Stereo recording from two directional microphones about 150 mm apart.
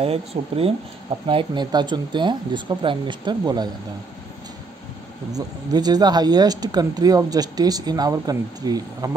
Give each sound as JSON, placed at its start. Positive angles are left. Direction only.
{"t": 0.0, "sound": "speech", "side_deg": -40}
{"t": 5.3, "sound": "speech", "side_deg": -25}